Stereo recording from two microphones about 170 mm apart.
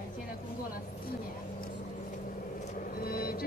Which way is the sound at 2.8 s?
60° left (ahead or behind).